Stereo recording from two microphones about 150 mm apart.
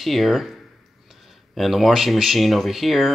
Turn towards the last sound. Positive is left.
turn(degrees=0)  # may be behind; listen again after turning